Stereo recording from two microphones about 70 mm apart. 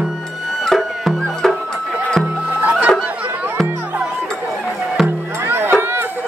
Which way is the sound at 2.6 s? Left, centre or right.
Right.